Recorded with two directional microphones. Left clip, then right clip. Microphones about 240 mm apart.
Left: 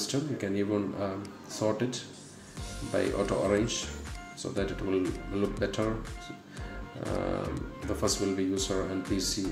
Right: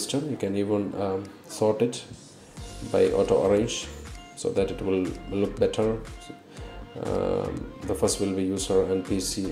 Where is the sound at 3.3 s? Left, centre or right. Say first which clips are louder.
Right 6 dB; right.